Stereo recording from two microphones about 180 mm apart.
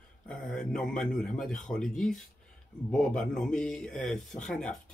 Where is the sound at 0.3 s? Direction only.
5° left (ahead or behind).